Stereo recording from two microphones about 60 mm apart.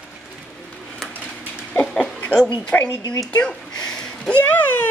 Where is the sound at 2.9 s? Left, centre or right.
Left.